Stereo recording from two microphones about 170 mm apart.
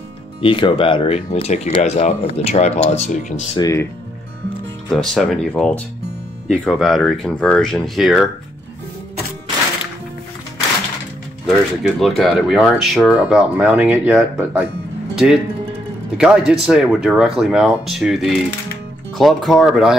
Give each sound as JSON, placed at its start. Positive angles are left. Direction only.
{"t": 0.4, "sound": "speech", "side_deg": 30}
{"t": 3.5, "sound": "speech", "side_deg": 20}
{"t": 4.8, "sound": "speech", "side_deg": 0}
{"t": 11.4, "sound": "speech", "side_deg": 0}